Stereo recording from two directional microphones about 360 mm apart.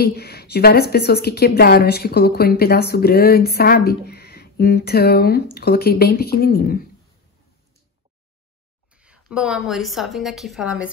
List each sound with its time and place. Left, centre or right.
0.0 s a woman's voice: left
8.9 s a sound: centre
9.3 s speech: centre